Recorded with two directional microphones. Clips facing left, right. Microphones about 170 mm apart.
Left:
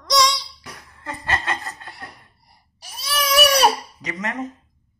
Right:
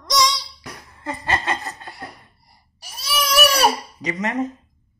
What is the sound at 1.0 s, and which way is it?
Chuckle, 25° right (ahead or behind).